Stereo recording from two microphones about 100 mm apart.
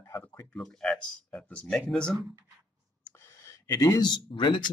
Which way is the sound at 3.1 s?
25° left (ahead or behind).